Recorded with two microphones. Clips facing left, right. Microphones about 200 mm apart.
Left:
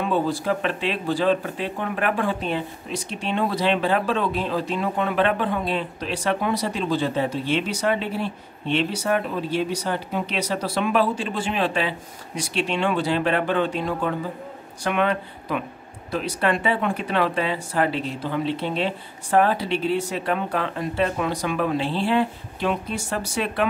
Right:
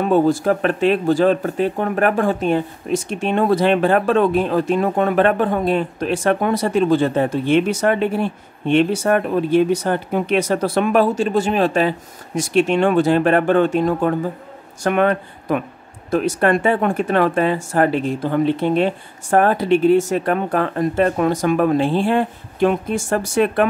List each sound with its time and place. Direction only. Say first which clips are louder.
0.0 s speech: right 8 dB; 45° right (ahead or behind)